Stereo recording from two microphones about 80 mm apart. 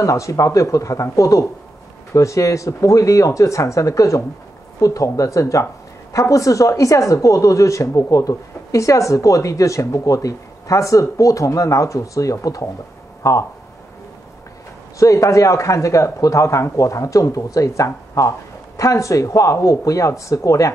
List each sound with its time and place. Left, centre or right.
0.0 s speech: left
15.0 s speech: left